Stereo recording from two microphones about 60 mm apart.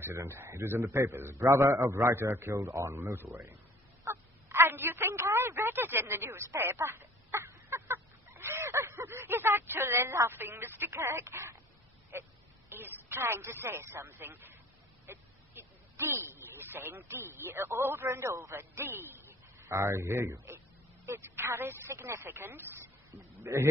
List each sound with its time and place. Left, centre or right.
0.0 s a man's voice: right
1.3 s a man's voice: right
4.0 s a sound: right
5.1 s a sound: right
6.0 s a sound: right
12.1 s vehicle: right
13.2 s a man's voice: right
15.0 s a sound: right
17.4 s a man's voice: right
18.6 s speech: right
19.7 s a man's voice: right
23.4 s a man's voice: right